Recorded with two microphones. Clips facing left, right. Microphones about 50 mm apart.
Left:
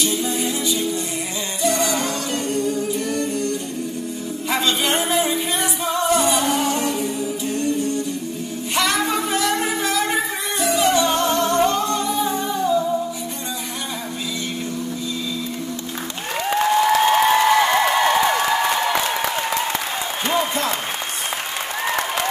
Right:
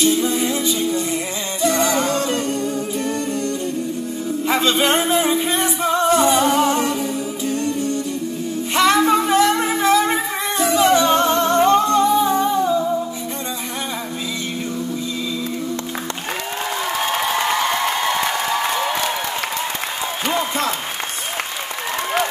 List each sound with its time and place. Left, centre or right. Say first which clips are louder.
0.0 s music: right 4 dB; right
1.6 s humming: right 3 dB; right
4.5 s music: right 3 dB; right
8.7 s a sound: right 6 dB; right